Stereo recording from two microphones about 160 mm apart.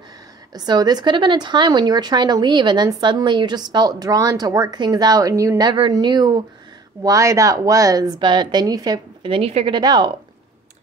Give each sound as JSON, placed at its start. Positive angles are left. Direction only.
{"t": 0.5, "sound": "speech", "side_deg": -25}